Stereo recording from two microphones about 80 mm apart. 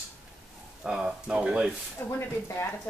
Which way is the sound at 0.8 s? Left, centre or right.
Centre.